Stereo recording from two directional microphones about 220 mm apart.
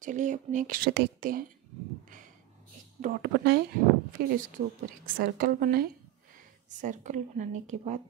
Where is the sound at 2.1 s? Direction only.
35° right (ahead or behind).